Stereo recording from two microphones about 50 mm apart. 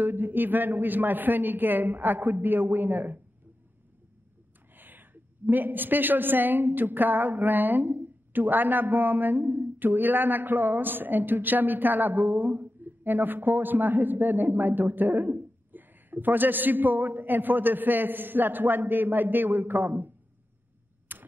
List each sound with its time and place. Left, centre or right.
0.0 s a woman's voice: right
4.7 s a woman's voice: right
21.1 s a sound: right